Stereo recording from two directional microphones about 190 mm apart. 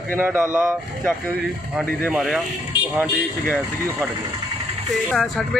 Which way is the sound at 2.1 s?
Centre (ahead or behind).